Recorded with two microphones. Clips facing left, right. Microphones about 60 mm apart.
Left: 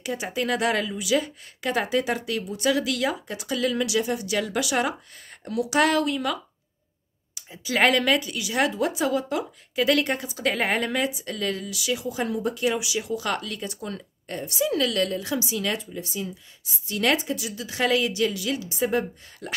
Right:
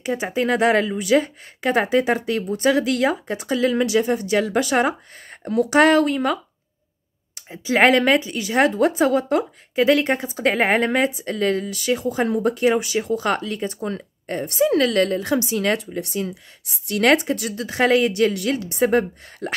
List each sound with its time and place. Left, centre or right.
0.0 s speech: right
9.8 s speech: right